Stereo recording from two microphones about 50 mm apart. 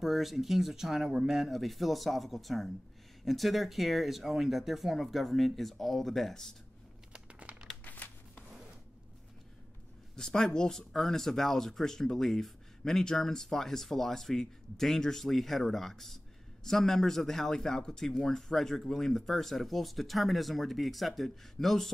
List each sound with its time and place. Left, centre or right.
0.0 s speech: centre
7.1 s crumpling: right
7.8 s a sound: left
10.1 s speech: centre